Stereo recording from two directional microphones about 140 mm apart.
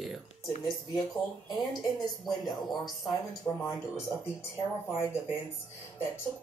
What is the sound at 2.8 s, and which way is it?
Speech, centre (ahead or behind).